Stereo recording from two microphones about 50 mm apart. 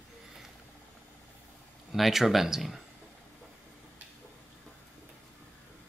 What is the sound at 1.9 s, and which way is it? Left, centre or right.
Speech, centre.